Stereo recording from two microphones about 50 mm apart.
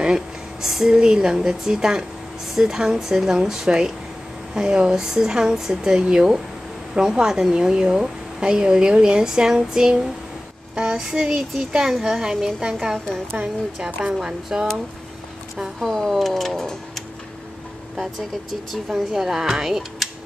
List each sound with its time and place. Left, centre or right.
0.0 s a sound: centre
0.7 s a woman's voice: centre
13.8 s a woman's voice: centre
15.5 s speech: centre